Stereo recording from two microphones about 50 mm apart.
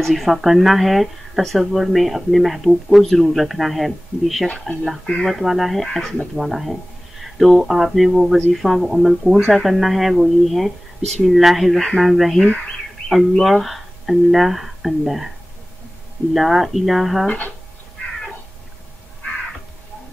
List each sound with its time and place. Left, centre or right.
0.0 s speech: centre
16.3 s speech: centre